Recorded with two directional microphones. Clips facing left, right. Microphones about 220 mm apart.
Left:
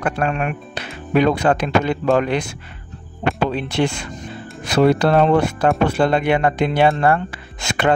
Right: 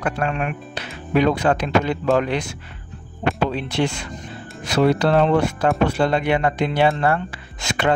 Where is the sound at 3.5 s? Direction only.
55° left (ahead or behind).